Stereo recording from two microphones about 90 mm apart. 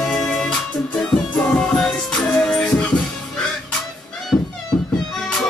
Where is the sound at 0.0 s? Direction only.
5° left (ahead or behind).